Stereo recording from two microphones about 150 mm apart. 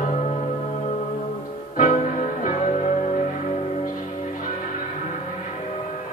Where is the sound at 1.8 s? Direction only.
55° left (ahead or behind).